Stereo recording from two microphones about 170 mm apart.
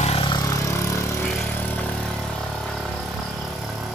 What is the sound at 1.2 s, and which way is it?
Vehicle, 5° left (ahead or behind).